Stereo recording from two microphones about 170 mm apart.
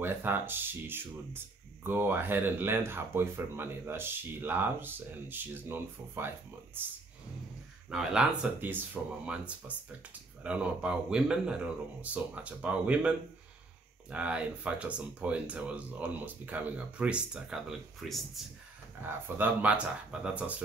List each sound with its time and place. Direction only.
0.0 s speech: 10° right (ahead or behind)
7.9 s speech: 5° right (ahead or behind)
14.1 s speech: 5° right (ahead or behind)
19.0 s speech: 10° right (ahead or behind)